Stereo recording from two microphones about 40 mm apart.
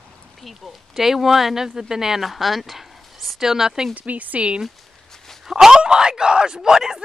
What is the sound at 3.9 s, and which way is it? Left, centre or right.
Speech, right.